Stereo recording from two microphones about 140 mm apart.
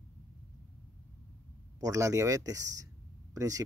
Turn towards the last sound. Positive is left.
turn(degrees=-25)  # may be behind; listen again after turning